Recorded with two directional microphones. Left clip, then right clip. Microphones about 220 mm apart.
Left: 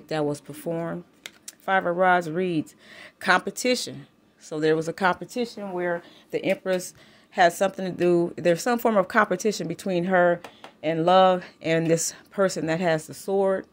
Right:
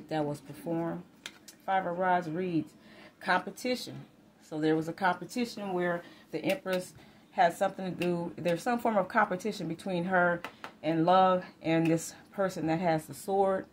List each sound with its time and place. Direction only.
0.1 s speech: 45° left (ahead or behind); by 13.7 s 30° left (ahead or behind)